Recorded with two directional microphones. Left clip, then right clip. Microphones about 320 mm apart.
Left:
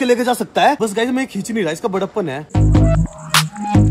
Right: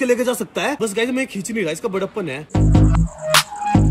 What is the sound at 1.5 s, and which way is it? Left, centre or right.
Music, centre.